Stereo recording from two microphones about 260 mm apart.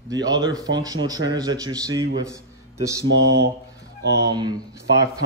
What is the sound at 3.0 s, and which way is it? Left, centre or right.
Speech, right.